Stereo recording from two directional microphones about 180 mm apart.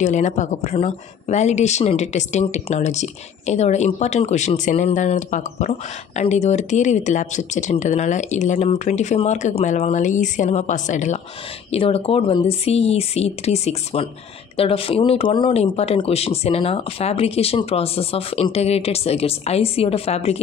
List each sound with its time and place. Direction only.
0.0 s a woman's voice: 40° left (ahead or behind)
11.7 s a woman's voice: 30° left (ahead or behind)